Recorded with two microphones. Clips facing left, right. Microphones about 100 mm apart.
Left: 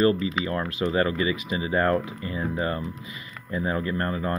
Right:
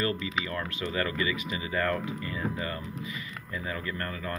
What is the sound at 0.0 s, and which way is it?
Speech, 30° left (ahead or behind).